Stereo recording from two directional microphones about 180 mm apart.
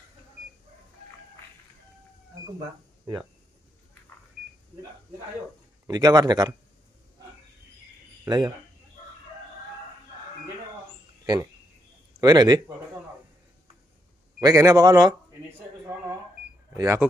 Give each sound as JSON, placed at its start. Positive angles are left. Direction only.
{"t": 5.9, "sound": "a man's voice", "side_deg": -20}
{"t": 8.3, "sound": "a man's voice", "side_deg": -25}
{"t": 12.2, "sound": "a man's voice", "side_deg": -20}
{"t": 14.4, "sound": "a man's voice", "side_deg": -15}
{"t": 16.7, "sound": "speech", "side_deg": -15}